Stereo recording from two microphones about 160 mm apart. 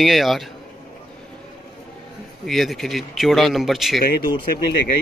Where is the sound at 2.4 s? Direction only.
Centre (ahead or behind).